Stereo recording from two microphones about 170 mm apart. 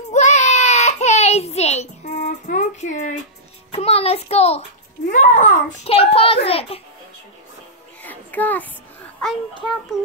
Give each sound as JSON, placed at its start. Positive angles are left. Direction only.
{"t": 0.1, "sound": "child singing", "side_deg": 45}
{"t": 3.7, "sound": "a child's voice", "side_deg": 35}
{"t": 5.1, "sound": "a child's voice", "side_deg": 45}
{"t": 8.0, "sound": "child singing", "side_deg": 10}
{"t": 9.9, "sound": "child singing", "side_deg": 0}